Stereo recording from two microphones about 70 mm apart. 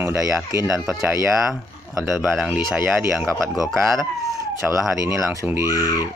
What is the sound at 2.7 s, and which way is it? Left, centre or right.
Speech, centre.